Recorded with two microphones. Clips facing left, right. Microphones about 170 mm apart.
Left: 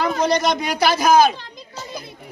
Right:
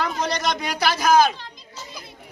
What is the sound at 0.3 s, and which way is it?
A man's voice, 5° left (ahead or behind).